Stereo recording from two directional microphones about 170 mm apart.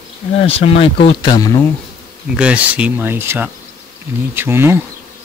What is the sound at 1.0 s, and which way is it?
Speech, 25° left (ahead or behind).